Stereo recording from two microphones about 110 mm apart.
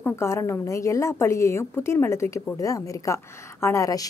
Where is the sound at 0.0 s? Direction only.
25° left (ahead or behind).